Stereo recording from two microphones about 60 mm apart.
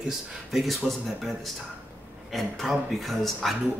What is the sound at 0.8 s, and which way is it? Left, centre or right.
Speech, centre.